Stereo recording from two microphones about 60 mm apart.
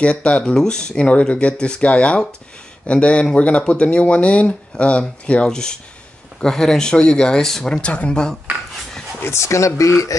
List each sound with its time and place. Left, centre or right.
0.0 s speech: left
9.2 s speech: left